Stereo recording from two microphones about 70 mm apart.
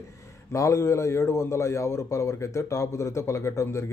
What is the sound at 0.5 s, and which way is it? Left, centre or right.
A man's voice, left.